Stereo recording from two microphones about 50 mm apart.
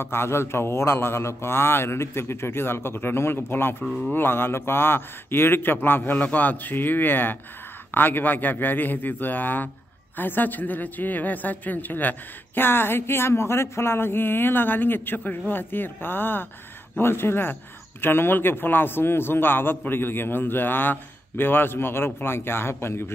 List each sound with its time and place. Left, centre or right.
0.0 s a woman's voice: left